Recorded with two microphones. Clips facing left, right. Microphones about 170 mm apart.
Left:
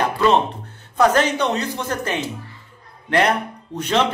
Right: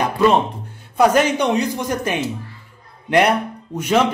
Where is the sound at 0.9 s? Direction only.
10° right (ahead or behind).